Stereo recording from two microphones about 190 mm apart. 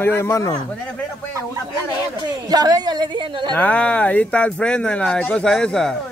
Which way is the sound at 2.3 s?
20° right (ahead or behind).